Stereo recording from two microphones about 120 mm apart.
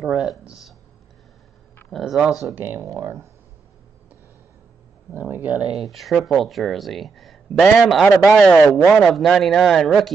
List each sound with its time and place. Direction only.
0.0 s a sound: 10° right (ahead or behind)
1.9 s speech: centre (ahead or behind)
2.5 s speech: 20° right (ahead or behind)
5.1 s speech: 15° right (ahead or behind); by 9.9 s 5° left (ahead or behind)